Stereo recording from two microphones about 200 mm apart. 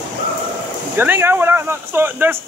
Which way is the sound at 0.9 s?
10° right (ahead or behind).